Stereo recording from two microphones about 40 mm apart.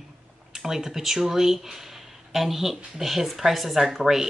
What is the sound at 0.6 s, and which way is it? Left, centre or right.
Speech, centre.